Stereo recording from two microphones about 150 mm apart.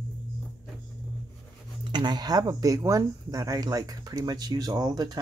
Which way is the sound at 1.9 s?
30° right (ahead or behind).